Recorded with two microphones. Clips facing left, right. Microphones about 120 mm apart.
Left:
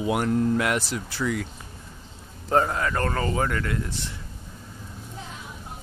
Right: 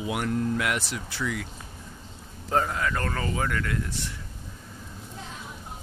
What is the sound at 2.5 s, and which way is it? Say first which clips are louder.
Speech: left 3 dB; 40° left (ahead or behind).